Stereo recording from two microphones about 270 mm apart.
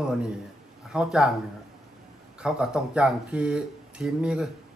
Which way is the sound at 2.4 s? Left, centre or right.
Centre.